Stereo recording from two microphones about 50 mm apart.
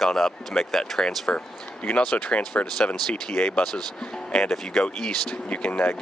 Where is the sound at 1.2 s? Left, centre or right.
Left; by 4.5 s centre.